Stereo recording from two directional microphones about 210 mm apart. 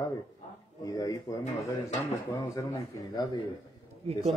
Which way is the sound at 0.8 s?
15° left (ahead or behind).